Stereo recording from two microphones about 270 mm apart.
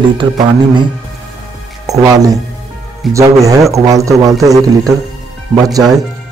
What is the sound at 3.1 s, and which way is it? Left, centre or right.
Speech, centre.